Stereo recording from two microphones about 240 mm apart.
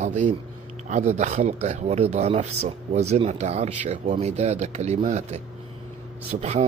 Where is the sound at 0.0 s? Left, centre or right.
Right.